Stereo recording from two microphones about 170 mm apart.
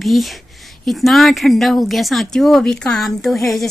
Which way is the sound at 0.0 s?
Centre (ahead or behind).